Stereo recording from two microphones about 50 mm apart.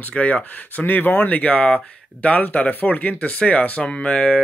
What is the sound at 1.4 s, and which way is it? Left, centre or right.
Speech, left.